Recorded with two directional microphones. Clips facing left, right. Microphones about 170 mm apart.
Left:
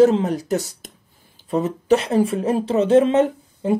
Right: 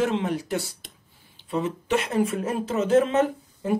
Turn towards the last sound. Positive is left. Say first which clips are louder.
# left 5 dB
turn(degrees=25)  # may be behind; listen again after turning